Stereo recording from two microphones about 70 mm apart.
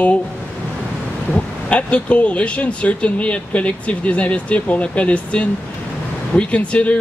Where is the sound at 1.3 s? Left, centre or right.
Centre.